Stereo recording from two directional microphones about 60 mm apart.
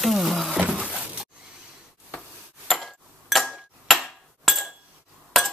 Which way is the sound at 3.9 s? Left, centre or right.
Centre.